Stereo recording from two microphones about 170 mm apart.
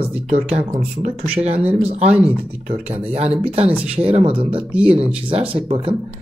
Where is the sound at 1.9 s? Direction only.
40° right (ahead or behind).